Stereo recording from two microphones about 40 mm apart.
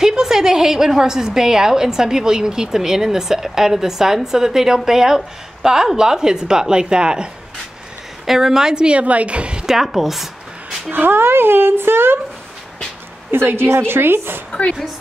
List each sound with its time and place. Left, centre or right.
0.0 s a woman's voice: centre
8.3 s a woman's voice: centre
8.8 s a woman's voice: right
9.7 s a woman's voice: centre
10.9 s speech: right
13.3 s speech: right